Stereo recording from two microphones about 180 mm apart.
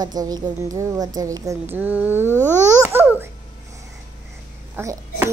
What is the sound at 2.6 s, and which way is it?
Babbling, 15° right (ahead or behind).